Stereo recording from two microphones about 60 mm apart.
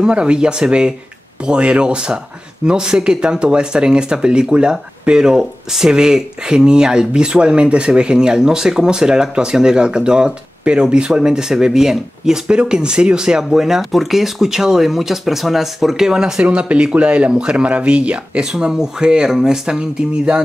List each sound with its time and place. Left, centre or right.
0.0 s speech: centre